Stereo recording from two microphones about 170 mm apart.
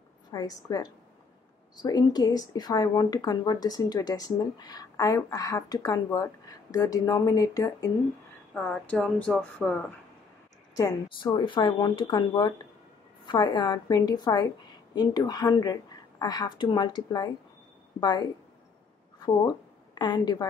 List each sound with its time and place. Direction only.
0.3 s speech: 20° left (ahead or behind)
8.5 s speech: 5° left (ahead or behind)
10.7 s speech: 20° left (ahead or behind)